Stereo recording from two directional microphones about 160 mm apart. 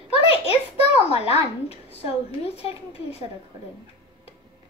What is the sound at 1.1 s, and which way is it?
A woman's voice, 40° left (ahead or behind).